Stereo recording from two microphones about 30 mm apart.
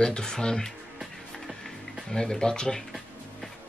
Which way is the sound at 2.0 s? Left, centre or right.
Centre.